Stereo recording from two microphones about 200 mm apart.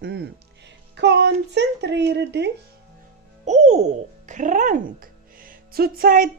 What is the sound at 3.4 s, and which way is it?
A child's voice, 35° right (ahead or behind).